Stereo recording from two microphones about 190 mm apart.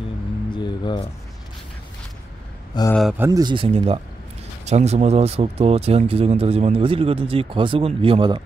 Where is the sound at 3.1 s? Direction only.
15° right (ahead or behind).